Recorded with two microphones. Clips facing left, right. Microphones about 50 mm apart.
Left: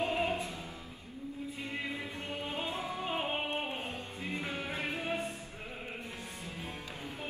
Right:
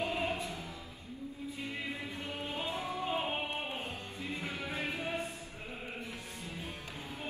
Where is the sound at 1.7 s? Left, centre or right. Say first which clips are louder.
Left 2 dB; left.